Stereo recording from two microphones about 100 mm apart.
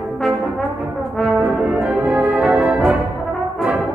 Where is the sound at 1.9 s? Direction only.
20° right (ahead or behind).